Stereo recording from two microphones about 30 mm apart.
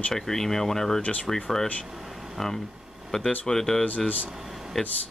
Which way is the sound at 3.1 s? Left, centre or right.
Left.